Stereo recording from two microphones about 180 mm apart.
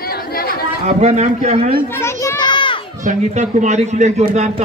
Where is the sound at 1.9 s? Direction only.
15° left (ahead or behind).